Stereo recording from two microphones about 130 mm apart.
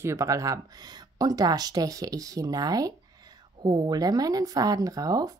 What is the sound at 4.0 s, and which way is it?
Speech, 30° right (ahead or behind).